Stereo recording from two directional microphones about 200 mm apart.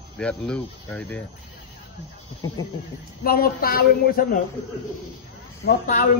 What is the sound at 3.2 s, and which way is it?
A woman's voice, 50° left (ahead or behind).